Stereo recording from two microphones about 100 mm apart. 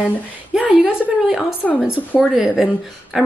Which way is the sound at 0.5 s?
10° right (ahead or behind).